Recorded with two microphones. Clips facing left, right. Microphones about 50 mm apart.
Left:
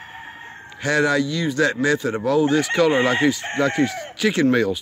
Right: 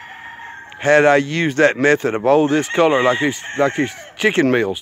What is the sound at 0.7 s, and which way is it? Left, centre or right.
Speech, right.